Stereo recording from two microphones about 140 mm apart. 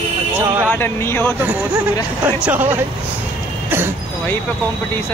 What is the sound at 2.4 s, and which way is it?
Speech, 15° right (ahead or behind).